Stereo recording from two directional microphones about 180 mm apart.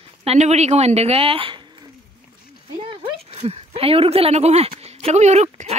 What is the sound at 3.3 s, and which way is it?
Speech, 35° right (ahead or behind).